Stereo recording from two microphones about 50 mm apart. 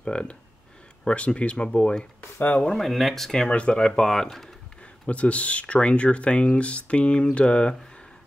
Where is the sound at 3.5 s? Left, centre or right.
Left.